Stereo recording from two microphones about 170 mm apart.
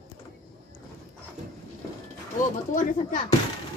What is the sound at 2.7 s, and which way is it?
Speech, 50° left (ahead or behind).